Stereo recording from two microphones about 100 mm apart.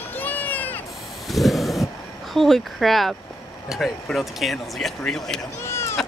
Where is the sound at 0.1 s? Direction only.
20° left (ahead or behind).